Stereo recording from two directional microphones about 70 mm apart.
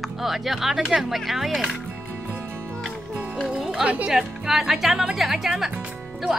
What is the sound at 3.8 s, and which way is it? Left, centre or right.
Speech, centre.